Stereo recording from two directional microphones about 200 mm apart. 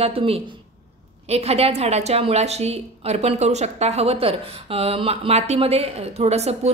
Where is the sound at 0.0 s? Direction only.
30° right (ahead or behind).